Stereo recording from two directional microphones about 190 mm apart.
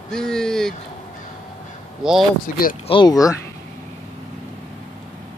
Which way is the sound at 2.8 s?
25° left (ahead or behind).